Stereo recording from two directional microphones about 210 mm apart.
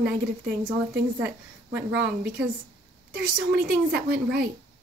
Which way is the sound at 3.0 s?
50° right (ahead or behind).